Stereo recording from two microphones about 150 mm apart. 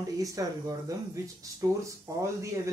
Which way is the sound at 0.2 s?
20° right (ahead or behind).